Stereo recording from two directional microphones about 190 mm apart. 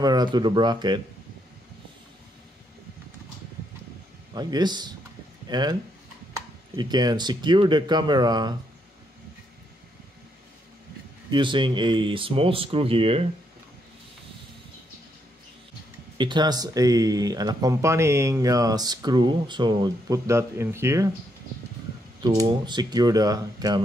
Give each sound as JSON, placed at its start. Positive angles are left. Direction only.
{"t": 0.0, "sound": "speech", "side_deg": -20}
{"t": 4.3, "sound": "speech", "side_deg": -20}
{"t": 6.8, "sound": "speech", "side_deg": -20}
{"t": 11.2, "sound": "speech", "side_deg": -25}
{"t": 16.2, "sound": "speech", "side_deg": -25}
{"t": 22.2, "sound": "speech", "side_deg": -25}